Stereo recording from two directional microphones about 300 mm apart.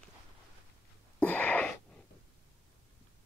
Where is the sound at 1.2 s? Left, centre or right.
Centre.